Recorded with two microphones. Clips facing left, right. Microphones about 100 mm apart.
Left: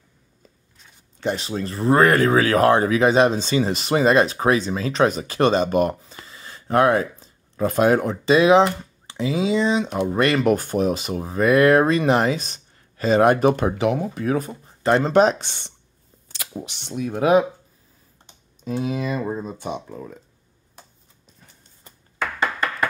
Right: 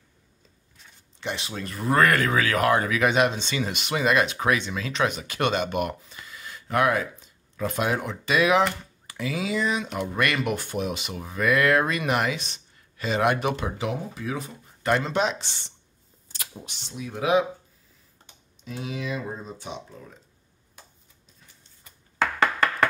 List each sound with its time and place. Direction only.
1.2 s speech: 40° left (ahead or behind)
8.3 s speech: 30° left (ahead or behind)
13.7 s speech: 60° left (ahead or behind)
14.2 s speech: 45° left (ahead or behind)
14.8 s speech: 30° left (ahead or behind); by 15.7 s 55° left (ahead or behind)
16.3 s speech: 90° left; by 17.5 s 50° left (ahead or behind)
18.6 s speech: 40° left (ahead or behind)
22.2 s a sound: 90° right